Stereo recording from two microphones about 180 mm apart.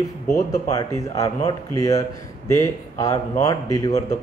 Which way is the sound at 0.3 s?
20° left (ahead or behind).